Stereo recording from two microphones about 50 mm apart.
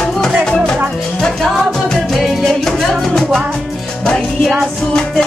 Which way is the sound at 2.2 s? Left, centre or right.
Centre.